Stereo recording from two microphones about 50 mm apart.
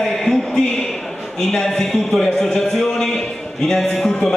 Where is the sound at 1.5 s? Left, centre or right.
Centre.